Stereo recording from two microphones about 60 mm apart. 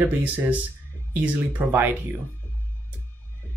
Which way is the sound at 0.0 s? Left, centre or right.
Right.